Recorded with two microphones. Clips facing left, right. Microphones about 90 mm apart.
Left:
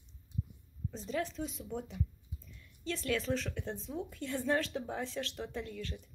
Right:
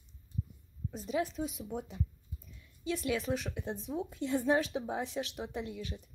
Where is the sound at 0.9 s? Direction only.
10° right (ahead or behind).